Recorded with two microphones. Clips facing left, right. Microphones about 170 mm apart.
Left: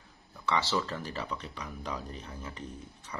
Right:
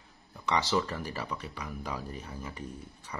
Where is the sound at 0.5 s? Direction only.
15° right (ahead or behind).